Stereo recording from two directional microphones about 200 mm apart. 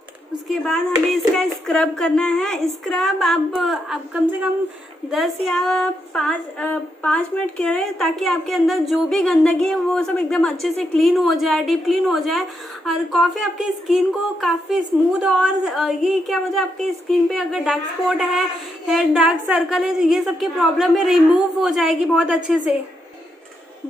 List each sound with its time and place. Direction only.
0.5 s female singing: 5° left (ahead or behind)